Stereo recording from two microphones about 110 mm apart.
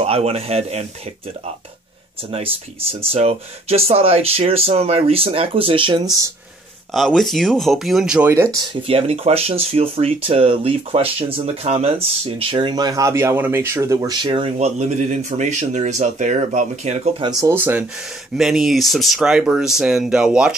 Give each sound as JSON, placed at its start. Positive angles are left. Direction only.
{"t": 0.0, "sound": "speech", "side_deg": -65}
{"t": 2.3, "sound": "speech", "side_deg": -60}
{"t": 6.9, "sound": "speech", "side_deg": 0}
{"t": 8.8, "sound": "speech", "side_deg": -65}
{"t": 12.7, "sound": "speech", "side_deg": -35}
{"t": 14.1, "sound": "speech", "side_deg": -50}
{"t": 14.6, "sound": "speech", "side_deg": -90}
{"t": 17.2, "sound": "speech", "side_deg": -35}
{"t": 17.6, "sound": "speech", "side_deg": -20}
{"t": 18.4, "sound": "speech", "side_deg": -5}